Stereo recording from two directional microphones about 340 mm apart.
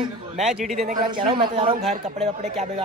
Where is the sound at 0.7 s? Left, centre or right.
Right.